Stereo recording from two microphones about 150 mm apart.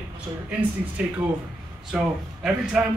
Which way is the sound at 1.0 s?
10° right (ahead or behind).